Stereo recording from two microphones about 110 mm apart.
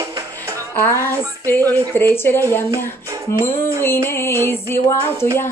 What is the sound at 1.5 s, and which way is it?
A woman's voice, 20° left (ahead or behind).